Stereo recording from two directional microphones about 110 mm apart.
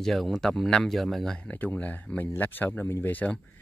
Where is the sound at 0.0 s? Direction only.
Centre (ahead or behind).